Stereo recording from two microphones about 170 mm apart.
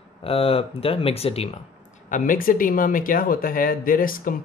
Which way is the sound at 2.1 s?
55° left (ahead or behind).